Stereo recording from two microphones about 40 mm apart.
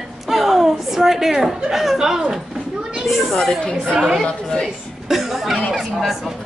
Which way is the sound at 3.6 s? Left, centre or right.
Centre.